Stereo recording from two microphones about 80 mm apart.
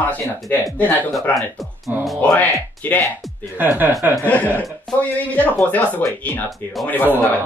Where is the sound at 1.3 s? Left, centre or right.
Centre.